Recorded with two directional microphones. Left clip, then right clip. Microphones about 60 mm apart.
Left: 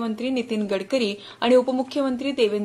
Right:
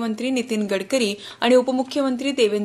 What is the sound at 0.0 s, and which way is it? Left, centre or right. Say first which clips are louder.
Speech: right 2 dB; right.